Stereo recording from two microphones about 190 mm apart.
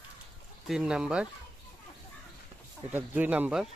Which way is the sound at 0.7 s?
5° right (ahead or behind).